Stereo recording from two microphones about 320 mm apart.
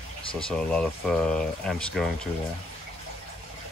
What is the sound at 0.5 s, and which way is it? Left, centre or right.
Speech, centre.